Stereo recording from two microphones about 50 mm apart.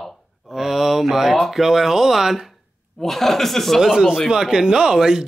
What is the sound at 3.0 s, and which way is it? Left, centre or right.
Speech, centre.